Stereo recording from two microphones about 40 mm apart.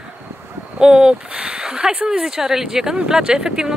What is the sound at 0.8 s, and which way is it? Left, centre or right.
Speech, centre.